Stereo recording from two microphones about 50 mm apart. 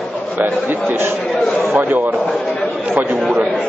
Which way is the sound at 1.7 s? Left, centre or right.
Right.